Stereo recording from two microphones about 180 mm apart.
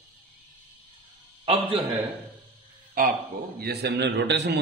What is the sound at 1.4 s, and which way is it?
Speech, 30° right (ahead or behind).